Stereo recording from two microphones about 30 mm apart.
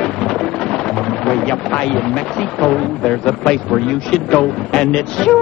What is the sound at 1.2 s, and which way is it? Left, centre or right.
Speech, left.